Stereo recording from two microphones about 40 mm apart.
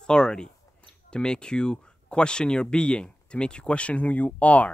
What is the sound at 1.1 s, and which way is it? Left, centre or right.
Speech, left.